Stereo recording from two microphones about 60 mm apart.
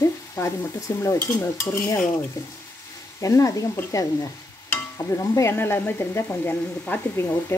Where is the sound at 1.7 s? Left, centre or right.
Left.